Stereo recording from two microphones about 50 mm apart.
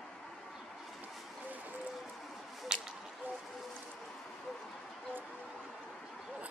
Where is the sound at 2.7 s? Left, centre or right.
Centre.